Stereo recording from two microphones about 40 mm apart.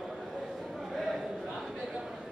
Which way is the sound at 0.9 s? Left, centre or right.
Centre.